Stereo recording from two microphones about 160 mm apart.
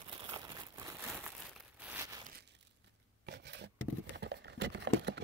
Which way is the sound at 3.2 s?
90° right.